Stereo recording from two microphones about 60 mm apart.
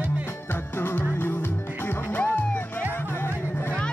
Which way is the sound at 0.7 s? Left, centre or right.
Left.